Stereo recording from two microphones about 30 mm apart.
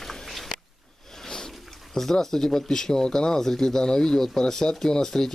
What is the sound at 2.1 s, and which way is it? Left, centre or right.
Speech, centre.